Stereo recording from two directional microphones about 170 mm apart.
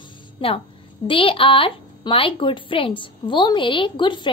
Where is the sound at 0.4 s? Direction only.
30° left (ahead or behind).